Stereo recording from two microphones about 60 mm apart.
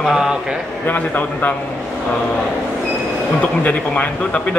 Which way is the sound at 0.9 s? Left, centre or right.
Left.